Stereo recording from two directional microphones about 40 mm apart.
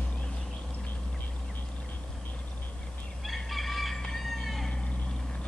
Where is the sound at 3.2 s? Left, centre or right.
Centre.